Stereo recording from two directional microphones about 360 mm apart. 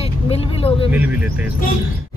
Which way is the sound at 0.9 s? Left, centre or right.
Centre.